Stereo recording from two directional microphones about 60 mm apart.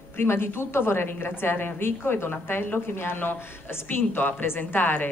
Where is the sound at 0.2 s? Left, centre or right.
Left.